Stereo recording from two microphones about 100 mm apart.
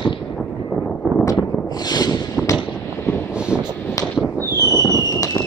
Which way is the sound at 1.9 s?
40° left (ahead or behind).